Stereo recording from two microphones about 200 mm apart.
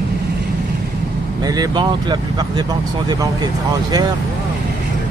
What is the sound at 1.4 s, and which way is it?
Speech, 20° right (ahead or behind).